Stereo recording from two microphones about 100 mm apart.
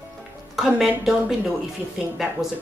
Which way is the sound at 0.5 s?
5° right (ahead or behind).